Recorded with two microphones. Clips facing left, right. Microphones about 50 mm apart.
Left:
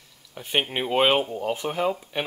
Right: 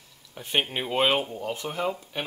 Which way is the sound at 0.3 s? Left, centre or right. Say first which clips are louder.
Left 1 dB; centre.